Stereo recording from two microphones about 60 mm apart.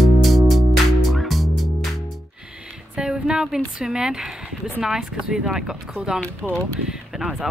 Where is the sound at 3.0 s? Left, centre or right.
Centre.